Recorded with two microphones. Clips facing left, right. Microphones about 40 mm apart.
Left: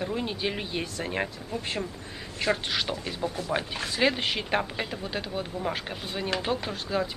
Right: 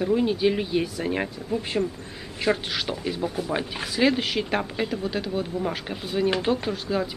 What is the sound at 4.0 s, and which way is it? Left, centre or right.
Speech, centre.